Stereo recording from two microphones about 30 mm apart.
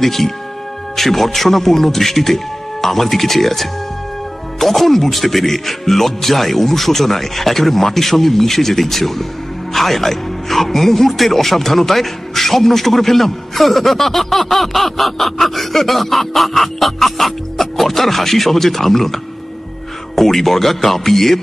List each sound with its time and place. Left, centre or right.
0.0 s a man's voice: centre